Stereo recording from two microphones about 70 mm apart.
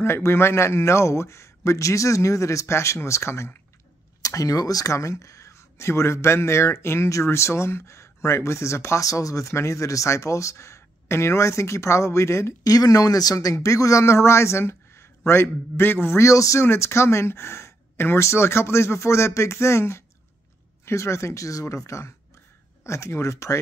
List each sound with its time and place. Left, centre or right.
0.0 s speech: left
4.2 s speech: left
12.7 s speech: left
16.2 s speech: left
16.6 s speech: left